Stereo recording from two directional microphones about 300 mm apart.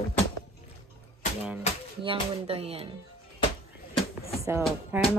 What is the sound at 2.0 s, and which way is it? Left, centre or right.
Speech, centre.